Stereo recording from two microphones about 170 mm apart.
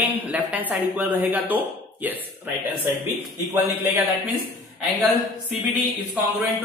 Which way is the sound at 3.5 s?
10° right (ahead or behind).